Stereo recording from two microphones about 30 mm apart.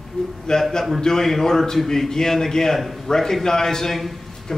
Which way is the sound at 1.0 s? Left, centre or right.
Centre.